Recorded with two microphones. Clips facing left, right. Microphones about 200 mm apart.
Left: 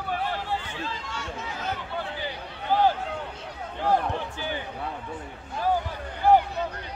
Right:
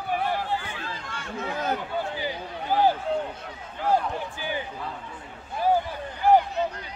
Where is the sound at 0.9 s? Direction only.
55° right (ahead or behind).